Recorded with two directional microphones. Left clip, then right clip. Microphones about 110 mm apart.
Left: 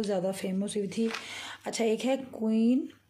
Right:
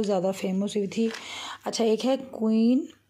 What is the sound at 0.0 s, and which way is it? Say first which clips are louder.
Speech: right 5 dB; 55° right (ahead or behind).